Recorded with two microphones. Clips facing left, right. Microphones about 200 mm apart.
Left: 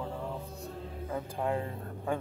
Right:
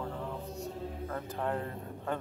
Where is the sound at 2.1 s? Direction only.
10° left (ahead or behind).